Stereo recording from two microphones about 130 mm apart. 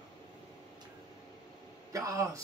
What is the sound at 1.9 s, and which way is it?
Speech, 25° right (ahead or behind).